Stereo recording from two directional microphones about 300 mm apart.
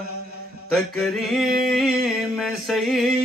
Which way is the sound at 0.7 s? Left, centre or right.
Centre.